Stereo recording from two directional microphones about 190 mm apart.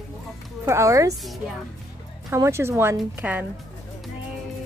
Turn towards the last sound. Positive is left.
turn(degrees=-10)  # may be behind; listen again after turning